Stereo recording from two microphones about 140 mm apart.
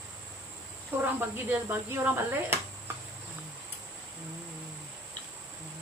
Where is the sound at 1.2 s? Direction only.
15° right (ahead or behind).